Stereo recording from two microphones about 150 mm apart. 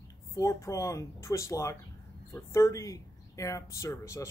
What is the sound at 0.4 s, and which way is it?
Speech, 20° left (ahead or behind).